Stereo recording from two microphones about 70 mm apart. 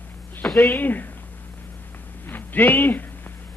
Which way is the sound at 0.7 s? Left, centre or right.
Left.